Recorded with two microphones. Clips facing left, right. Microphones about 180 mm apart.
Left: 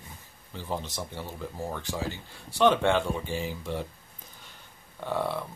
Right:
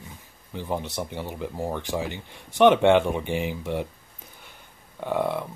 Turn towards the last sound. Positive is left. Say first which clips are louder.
# right 4 dB
turn(degrees=-15)  # may be behind; listen again after turning